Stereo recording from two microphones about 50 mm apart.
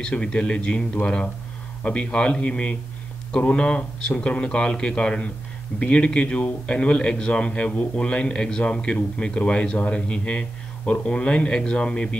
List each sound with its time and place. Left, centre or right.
0.0 s speech: centre